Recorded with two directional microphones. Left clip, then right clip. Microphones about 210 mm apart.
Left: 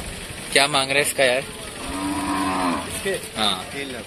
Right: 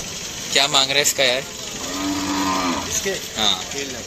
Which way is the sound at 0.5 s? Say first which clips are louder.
Right 1 dB; 20° left (ahead or behind).